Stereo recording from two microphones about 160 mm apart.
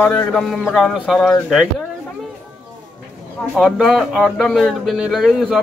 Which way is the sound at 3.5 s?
Centre (ahead or behind).